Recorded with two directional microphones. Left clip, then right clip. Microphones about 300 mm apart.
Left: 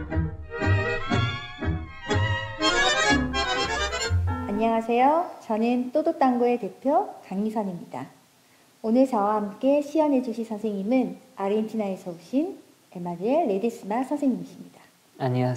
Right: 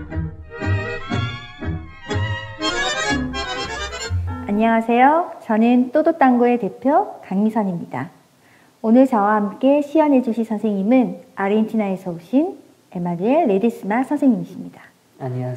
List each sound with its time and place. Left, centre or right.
0.0 s music: centre
4.5 s a woman's voice: right
15.1 s speech: left